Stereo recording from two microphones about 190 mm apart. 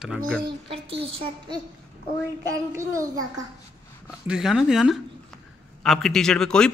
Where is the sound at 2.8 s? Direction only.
15° right (ahead or behind).